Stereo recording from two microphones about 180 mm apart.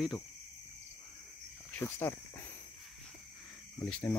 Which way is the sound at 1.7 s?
10° left (ahead or behind).